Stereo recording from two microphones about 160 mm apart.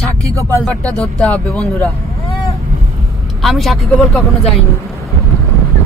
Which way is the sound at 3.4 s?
Centre (ahead or behind).